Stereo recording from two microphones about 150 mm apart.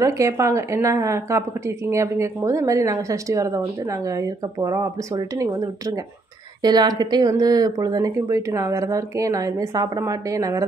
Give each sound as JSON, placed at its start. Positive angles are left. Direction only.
{"t": 0.0, "sound": "speech", "side_deg": -20}